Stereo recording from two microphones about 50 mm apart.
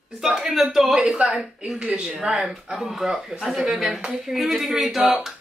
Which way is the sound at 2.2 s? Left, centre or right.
Centre.